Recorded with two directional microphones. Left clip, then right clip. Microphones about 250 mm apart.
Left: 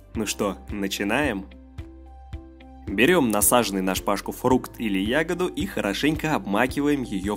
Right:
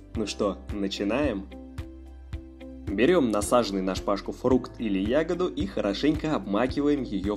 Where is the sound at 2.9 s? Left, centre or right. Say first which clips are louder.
Left 3 dB; left.